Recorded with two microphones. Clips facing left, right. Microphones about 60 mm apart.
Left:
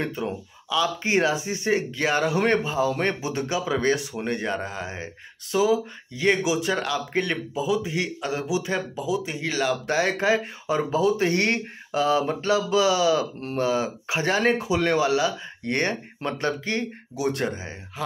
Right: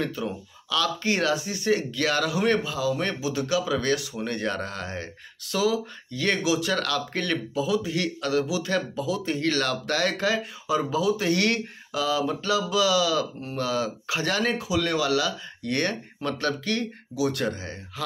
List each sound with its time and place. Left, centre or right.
0.0 s speech: left
4.3 s speech: centre
10.7 s speech: left